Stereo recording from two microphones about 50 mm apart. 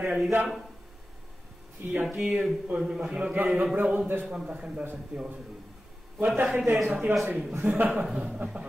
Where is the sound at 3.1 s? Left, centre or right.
Centre.